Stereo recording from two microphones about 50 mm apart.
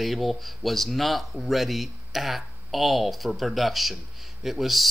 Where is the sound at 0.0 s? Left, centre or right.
Centre.